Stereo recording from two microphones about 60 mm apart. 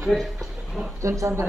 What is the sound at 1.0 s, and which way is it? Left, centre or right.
Speech, right.